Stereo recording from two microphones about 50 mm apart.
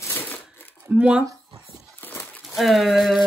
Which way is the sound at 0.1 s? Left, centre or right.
Left.